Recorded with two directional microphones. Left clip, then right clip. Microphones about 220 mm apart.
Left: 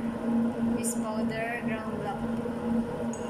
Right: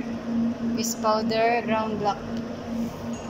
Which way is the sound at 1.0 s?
15° right (ahead or behind).